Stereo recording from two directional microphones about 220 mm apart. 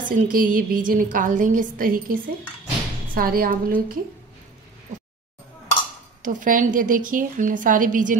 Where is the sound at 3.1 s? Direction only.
40° right (ahead or behind).